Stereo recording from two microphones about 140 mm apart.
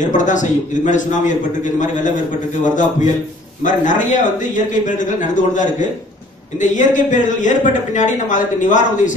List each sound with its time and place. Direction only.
0.0 s a man's voice: 65° left (ahead or behind)